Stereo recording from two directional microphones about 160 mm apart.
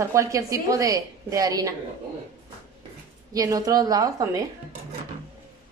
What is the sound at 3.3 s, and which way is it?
A woman's voice, 20° right (ahead or behind).